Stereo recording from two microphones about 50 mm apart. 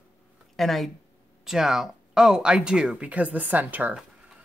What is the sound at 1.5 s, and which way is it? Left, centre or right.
Speech, centre.